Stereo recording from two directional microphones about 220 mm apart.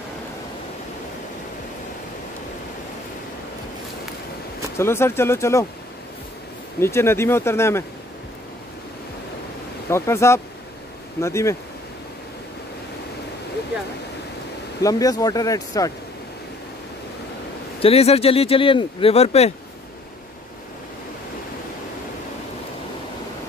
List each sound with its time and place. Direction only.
4.7 s speech: 10° left (ahead or behind)
6.8 s speech: 10° left (ahead or behind)
9.8 s speech: 10° left (ahead or behind)
14.8 s speech: 15° left (ahead or behind)
17.7 s speech: 25° left (ahead or behind)